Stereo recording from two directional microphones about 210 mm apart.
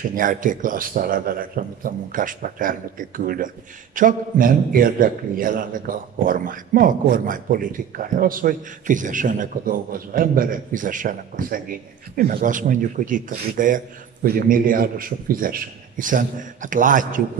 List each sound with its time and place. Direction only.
0.1 s a man's voice: 40° right (ahead or behind)